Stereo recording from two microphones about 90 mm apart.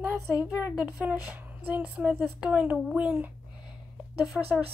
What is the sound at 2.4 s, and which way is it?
Speech, 10° right (ahead or behind).